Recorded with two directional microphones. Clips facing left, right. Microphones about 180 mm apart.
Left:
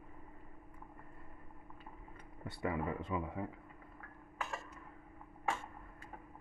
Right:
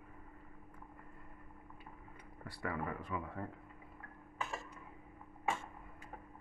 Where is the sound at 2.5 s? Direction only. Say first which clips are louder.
Left 3 dB; 20° left (ahead or behind).